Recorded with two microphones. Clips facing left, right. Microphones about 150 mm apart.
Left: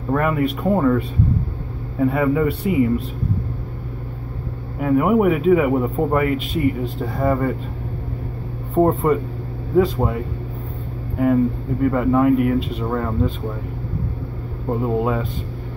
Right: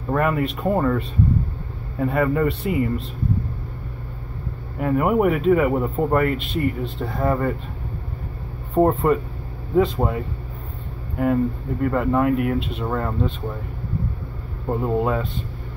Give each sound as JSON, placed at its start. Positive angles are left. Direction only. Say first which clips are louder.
{"t": 0.1, "sound": "a man's voice", "louder": "left 2 dB", "side_deg": 0}
{"t": 4.7, "sound": "a man's voice", "louder": "left 3 dB", "side_deg": 0}
{"t": 6.3, "sound": "speech", "louder": "left 3 dB", "side_deg": 45}
{"t": 7.0, "sound": "a man's voice", "louder": "even", "side_deg": 0}
{"t": 8.7, "sound": "a man's voice", "louder": "left 1 dB", "side_deg": 0}
{"t": 11.8, "sound": "a man's voice", "louder": "left 3 dB", "side_deg": 0}
{"t": 14.7, "sound": "a man's voice", "louder": "left 1 dB", "side_deg": 0}